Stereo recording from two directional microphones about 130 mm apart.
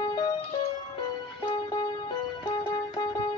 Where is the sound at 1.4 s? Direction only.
30° left (ahead or behind).